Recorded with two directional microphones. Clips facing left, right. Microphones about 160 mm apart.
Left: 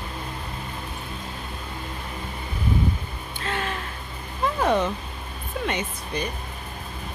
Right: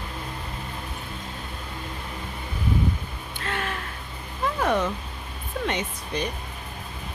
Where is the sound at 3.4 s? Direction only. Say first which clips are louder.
Left 1 dB; 25° left (ahead or behind).